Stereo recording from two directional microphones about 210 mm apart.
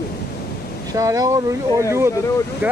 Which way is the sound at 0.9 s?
15° right (ahead or behind).